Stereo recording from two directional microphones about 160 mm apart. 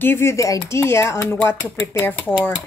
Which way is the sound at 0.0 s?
15° left (ahead or behind).